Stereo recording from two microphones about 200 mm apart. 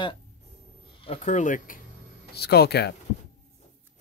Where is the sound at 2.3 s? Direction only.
55° left (ahead or behind).